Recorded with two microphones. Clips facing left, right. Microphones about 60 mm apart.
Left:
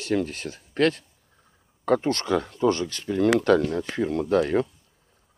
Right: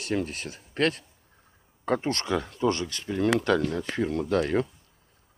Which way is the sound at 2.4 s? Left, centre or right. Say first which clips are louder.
Left 3 dB; left.